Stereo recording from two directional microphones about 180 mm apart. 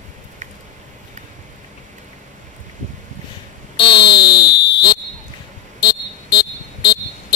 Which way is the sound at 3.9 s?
65° left (ahead or behind).